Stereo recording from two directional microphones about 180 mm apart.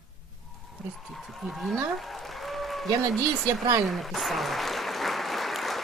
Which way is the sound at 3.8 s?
Centre (ahead or behind).